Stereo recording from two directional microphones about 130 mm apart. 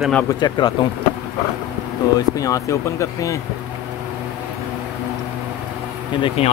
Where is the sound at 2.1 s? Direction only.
25° left (ahead or behind).